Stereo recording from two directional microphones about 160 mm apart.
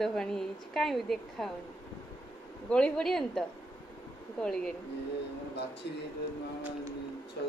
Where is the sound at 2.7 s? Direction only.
5° left (ahead or behind).